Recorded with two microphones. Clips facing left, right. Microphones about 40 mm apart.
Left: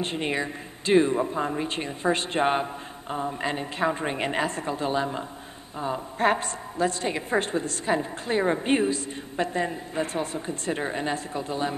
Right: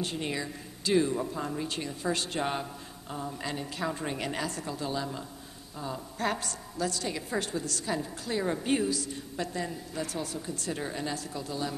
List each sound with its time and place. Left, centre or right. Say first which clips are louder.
0.0 s a woman's voice: left 6 dB; left